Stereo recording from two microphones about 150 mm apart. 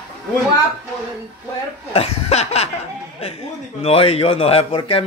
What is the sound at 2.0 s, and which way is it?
Laughter, 45° left (ahead or behind).